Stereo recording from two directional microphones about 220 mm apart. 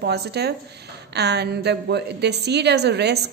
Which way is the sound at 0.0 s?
50° right (ahead or behind).